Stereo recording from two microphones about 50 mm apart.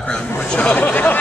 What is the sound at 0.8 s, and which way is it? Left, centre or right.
Speech, left.